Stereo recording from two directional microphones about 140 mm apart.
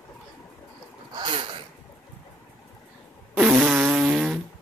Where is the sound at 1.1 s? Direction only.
35° right (ahead or behind).